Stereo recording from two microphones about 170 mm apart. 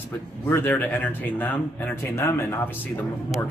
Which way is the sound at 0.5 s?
10° left (ahead or behind).